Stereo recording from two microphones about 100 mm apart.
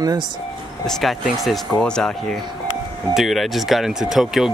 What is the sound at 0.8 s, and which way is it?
Speech, centre (ahead or behind).